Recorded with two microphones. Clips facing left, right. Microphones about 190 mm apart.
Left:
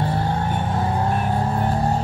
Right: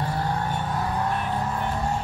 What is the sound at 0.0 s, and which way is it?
Vehicle, 25° left (ahead or behind).